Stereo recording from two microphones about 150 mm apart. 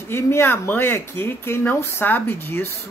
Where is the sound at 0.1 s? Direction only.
15° left (ahead or behind).